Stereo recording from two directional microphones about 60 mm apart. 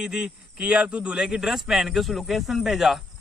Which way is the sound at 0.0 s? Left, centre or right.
Centre.